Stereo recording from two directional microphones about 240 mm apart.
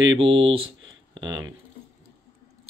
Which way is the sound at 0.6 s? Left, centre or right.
Right.